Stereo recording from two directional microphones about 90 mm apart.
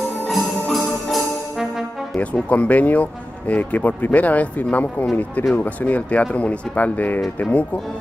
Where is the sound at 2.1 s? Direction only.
15° left (ahead or behind).